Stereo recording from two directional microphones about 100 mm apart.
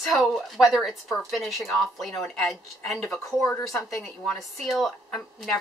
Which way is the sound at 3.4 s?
25° left (ahead or behind).